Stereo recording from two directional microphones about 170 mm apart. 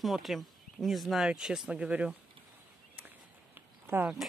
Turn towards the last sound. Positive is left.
turn(degrees=-5)  # may be behind; listen again after turning